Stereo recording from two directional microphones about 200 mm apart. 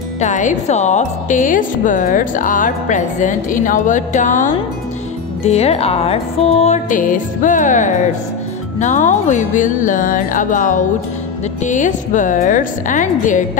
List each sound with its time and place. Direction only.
0.2 s speech: 40° left (ahead or behind)